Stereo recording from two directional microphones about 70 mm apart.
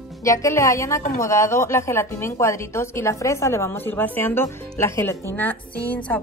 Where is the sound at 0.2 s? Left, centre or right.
Left.